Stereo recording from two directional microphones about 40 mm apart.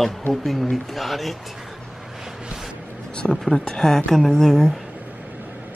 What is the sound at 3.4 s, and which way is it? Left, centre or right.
Speech, centre.